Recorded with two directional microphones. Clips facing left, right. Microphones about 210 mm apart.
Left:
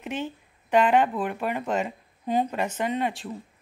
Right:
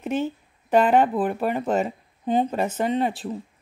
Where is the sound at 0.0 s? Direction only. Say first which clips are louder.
Right 6 dB; 40° right (ahead or behind).